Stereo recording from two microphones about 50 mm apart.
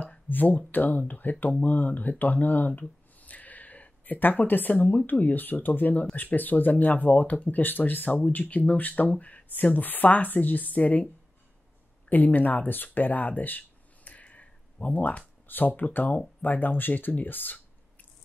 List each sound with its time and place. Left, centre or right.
0.3 s speech: left
12.1 s speech: left